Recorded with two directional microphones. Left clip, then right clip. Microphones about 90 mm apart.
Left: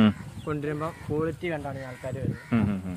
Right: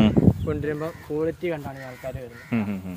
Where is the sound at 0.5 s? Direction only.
35° left (ahead or behind).